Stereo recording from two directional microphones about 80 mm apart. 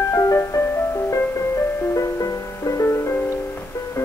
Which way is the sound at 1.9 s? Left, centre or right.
Left.